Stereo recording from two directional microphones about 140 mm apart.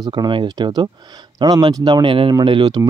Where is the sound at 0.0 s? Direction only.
30° right (ahead or behind).